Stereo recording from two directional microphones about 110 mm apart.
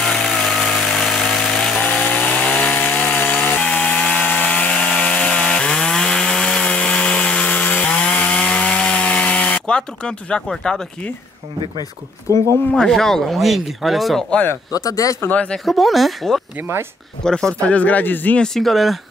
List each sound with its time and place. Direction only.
0.0 s power tool: centre (ahead or behind)
1.8 s chainsaw: 15° left (ahead or behind)
12.7 s speech: 5° left (ahead or behind)
14.3 s speech: 15° left (ahead or behind)
14.7 s speech: 30° left (ahead or behind)
15.2 s speech: 10° left (ahead or behind)
15.6 s speech: centre (ahead or behind)